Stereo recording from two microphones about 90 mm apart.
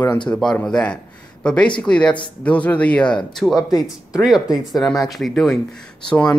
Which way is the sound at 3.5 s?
45° left (ahead or behind).